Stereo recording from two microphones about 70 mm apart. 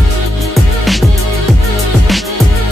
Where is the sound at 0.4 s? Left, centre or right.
Centre.